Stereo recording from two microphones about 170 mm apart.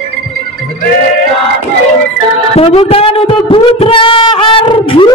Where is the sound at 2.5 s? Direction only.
35° left (ahead or behind).